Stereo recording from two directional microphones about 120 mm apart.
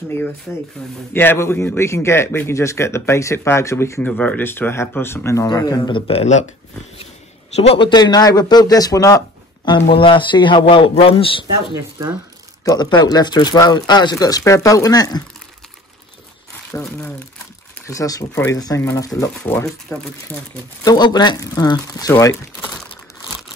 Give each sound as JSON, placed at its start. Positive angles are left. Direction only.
{"t": 0.5, "sound": "a man's voice", "side_deg": 10}
{"t": 4.1, "sound": "a man's voice", "side_deg": 10}
{"t": 6.0, "sound": "speech", "side_deg": 65}
{"t": 7.5, "sound": "speech", "side_deg": 55}
{"t": 7.9, "sound": "speech", "side_deg": 35}
{"t": 9.7, "sound": "speech", "side_deg": 45}
{"t": 12.6, "sound": "speech", "side_deg": 35}
{"t": 16.7, "sound": "a man's voice", "side_deg": 20}
{"t": 20.8, "sound": "a man's voice", "side_deg": 35}